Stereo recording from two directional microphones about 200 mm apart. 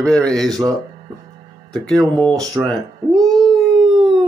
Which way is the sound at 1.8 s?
Centre (ahead or behind).